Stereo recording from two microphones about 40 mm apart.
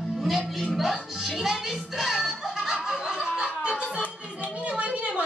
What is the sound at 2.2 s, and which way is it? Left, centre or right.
Music, centre.